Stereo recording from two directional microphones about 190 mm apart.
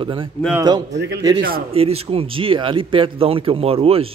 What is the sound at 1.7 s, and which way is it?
A man's voice, 30° right (ahead or behind).